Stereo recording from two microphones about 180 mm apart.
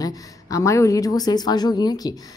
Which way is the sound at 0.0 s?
20° left (ahead or behind).